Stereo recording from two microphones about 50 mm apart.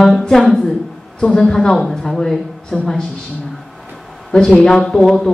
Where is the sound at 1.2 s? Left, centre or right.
Centre.